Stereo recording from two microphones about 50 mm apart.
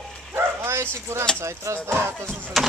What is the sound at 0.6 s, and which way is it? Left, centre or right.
Speech, right.